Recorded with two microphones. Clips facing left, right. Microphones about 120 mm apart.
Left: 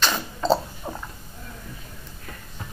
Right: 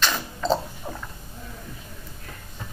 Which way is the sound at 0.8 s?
15° left (ahead or behind).